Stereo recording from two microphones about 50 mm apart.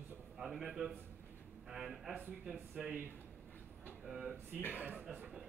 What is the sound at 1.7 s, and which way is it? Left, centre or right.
Speech, centre.